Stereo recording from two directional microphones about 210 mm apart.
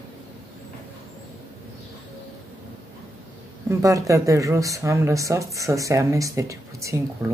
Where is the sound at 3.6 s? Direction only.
15° right (ahead or behind).